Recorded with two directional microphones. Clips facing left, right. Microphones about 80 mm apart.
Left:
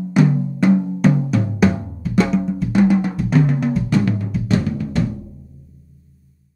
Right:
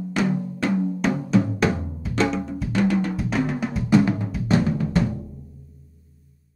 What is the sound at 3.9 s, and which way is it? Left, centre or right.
Drum, centre.